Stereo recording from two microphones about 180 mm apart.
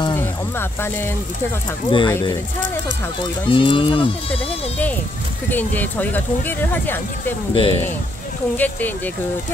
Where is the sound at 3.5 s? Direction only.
30° left (ahead or behind).